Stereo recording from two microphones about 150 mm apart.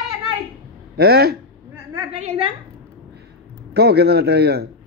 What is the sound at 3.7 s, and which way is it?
Speech, 90° right.